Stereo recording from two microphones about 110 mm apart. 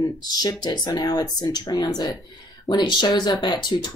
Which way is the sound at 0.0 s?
35° left (ahead or behind).